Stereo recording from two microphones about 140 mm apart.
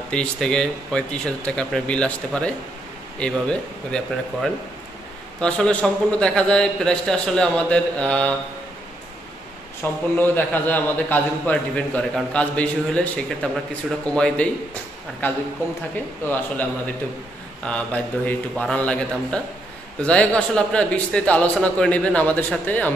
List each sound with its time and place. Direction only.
0.1 s a man's voice: 5° left (ahead or behind)
10.1 s a man's voice: 15° left (ahead or behind)